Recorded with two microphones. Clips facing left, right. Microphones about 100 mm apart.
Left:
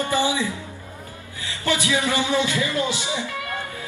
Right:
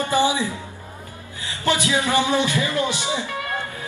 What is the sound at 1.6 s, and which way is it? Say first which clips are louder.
Speech: right 1 dB; 20° right (ahead or behind).